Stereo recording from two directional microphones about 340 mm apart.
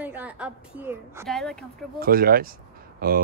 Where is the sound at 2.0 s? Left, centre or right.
Right.